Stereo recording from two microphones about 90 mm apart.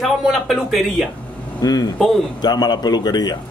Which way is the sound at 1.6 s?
50° left (ahead or behind).